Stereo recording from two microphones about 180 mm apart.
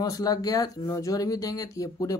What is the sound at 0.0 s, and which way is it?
Speech, 20° left (ahead or behind).